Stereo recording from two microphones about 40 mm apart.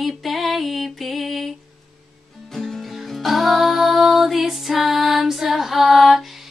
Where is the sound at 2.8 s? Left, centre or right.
Centre.